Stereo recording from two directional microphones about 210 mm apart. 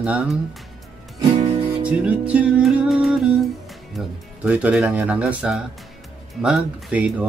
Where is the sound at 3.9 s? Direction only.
5° right (ahead or behind).